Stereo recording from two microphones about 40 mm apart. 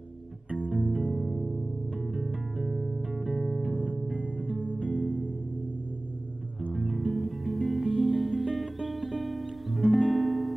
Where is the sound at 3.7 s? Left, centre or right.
Right.